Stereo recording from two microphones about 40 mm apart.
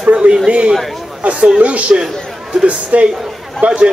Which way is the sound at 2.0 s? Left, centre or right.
Centre.